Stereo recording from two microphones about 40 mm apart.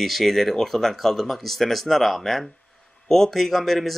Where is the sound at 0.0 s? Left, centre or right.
Centre.